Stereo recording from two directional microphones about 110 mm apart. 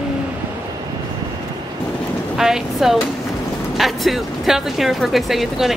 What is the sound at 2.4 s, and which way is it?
Speech, 5° right (ahead or behind).